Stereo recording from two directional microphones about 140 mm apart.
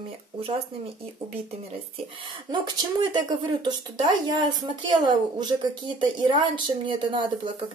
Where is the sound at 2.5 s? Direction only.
30° right (ahead or behind).